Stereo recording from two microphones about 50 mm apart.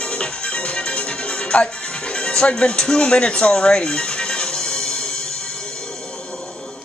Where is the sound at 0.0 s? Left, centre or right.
Left.